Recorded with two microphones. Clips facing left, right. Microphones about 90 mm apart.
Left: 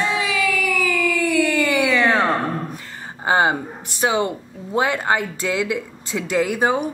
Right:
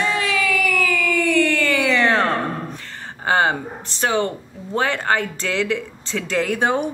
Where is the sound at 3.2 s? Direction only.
15° left (ahead or behind).